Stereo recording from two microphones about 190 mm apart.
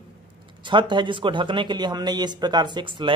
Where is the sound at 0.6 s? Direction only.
25° right (ahead or behind).